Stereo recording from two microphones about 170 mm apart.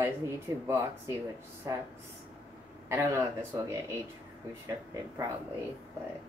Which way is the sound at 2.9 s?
15° right (ahead or behind).